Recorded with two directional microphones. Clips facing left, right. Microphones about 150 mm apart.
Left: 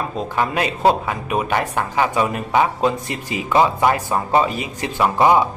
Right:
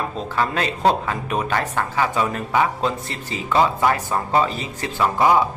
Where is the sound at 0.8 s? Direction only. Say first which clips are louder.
Left 2 dB; 10° left (ahead or behind).